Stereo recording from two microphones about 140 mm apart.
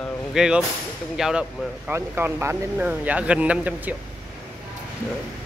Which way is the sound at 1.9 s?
15° right (ahead or behind).